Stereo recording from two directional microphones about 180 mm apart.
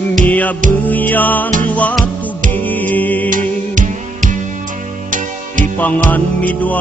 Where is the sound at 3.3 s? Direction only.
45° right (ahead or behind).